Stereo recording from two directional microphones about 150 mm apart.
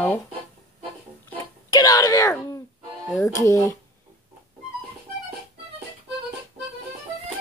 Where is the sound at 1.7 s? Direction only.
25° left (ahead or behind).